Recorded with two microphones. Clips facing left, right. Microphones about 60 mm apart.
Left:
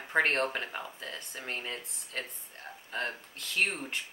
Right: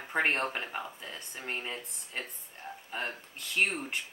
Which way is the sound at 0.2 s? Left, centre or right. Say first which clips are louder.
Left 1 dB; centre.